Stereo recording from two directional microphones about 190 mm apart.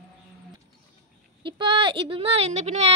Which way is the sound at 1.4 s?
25° right (ahead or behind).